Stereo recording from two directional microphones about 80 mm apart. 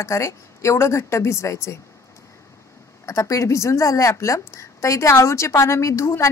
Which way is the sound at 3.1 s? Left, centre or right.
Left.